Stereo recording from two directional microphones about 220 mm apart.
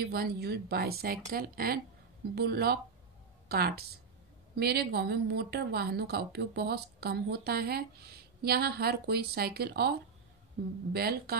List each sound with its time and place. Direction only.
0.0 s a woman's voice: 45° right (ahead or behind)